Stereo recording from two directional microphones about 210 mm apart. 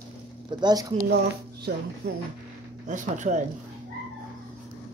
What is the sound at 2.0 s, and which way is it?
Speech, 50° right (ahead or behind).